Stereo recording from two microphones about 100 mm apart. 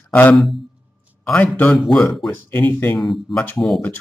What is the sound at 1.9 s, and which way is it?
Speech, 5° left (ahead or behind).